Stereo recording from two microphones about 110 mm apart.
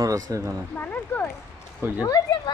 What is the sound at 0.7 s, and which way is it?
Speech, 15° left (ahead or behind).